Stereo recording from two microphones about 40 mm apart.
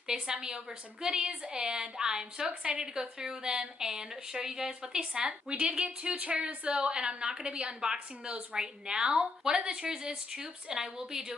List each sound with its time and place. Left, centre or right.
0.0 s a woman's voice: centre
5.2 s a woman's voice: right
7.4 s a woman's voice: right
7.8 s a woman's voice: centre